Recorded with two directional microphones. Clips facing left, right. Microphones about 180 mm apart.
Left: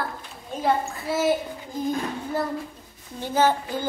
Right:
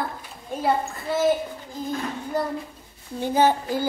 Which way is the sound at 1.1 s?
5° left (ahead or behind).